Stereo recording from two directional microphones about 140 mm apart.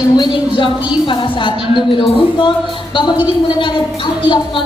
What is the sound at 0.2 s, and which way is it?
A woman's voice, 35° left (ahead or behind).